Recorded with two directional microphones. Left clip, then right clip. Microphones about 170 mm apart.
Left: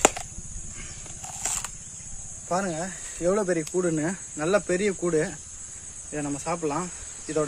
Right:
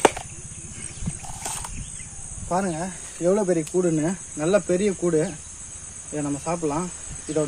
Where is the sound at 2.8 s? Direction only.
20° left (ahead or behind).